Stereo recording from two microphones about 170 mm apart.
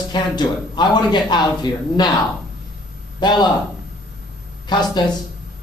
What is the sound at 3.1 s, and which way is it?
Speech, 25° left (ahead or behind).